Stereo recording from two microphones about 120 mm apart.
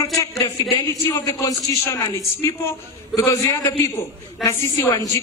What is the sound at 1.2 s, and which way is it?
A man's voice, 25° left (ahead or behind).